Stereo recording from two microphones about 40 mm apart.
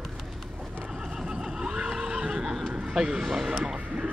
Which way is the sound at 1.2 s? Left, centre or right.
Centre.